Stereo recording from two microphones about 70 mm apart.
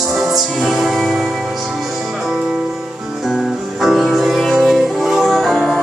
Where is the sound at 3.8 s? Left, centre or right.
Centre.